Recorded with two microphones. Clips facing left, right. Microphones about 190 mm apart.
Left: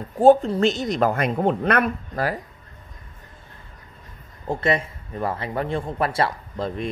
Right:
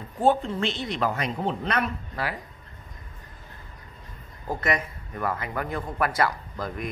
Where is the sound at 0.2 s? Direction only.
40° left (ahead or behind).